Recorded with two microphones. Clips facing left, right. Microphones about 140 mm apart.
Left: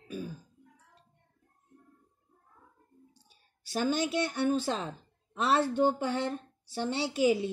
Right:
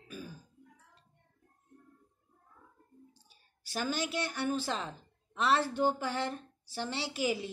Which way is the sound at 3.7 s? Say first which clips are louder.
Left 5 dB; 25° left (ahead or behind).